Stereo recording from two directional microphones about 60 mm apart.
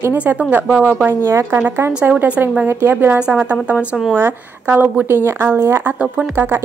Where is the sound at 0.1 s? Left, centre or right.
Right.